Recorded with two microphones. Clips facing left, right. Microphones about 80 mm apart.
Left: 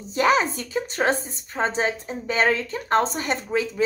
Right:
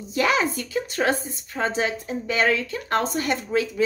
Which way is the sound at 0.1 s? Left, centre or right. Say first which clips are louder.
Left 2 dB; left.